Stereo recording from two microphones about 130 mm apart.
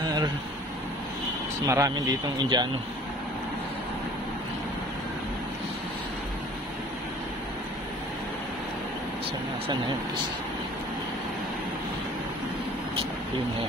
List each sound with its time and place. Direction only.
1.7 s speech: 30° right (ahead or behind)